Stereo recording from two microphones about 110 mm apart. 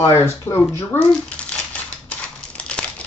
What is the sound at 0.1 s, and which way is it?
Speech, 20° left (ahead or behind).